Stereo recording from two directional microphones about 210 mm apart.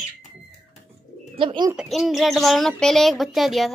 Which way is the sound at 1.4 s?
25° right (ahead or behind).